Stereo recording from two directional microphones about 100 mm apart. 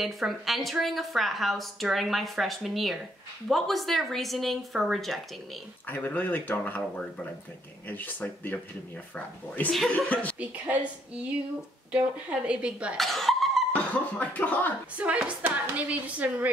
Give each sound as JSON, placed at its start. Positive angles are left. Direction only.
{"t": 0.0, "sound": "a woman's voice", "side_deg": 0}
{"t": 5.9, "sound": "speech", "side_deg": 20}
{"t": 9.7, "sound": "a woman's voice", "side_deg": 5}
{"t": 10.4, "sound": "speech", "side_deg": -15}
{"t": 12.9, "sound": "a sound", "side_deg": 0}
{"t": 14.1, "sound": "speech", "side_deg": 15}
{"t": 15.0, "sound": "speech", "side_deg": -15}